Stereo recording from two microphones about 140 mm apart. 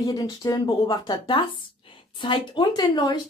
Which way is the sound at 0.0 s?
25° left (ahead or behind).